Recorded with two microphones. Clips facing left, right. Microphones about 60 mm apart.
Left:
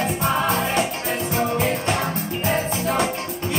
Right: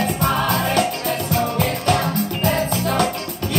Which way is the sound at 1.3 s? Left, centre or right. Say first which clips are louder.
Even; left.